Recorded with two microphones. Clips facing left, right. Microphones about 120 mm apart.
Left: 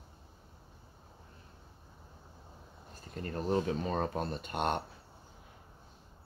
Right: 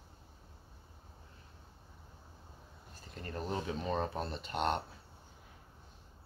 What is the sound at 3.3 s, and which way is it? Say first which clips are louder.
Speech: left 6 dB; 45° left (ahead or behind).